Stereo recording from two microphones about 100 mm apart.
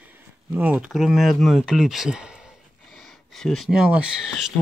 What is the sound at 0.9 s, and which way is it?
Speech, centre (ahead or behind).